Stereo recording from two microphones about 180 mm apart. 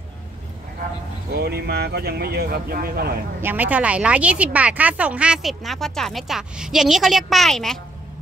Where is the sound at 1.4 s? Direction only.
60° right (ahead or behind).